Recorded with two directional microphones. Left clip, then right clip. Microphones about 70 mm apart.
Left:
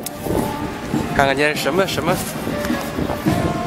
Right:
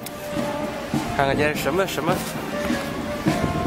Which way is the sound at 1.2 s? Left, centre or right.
Centre.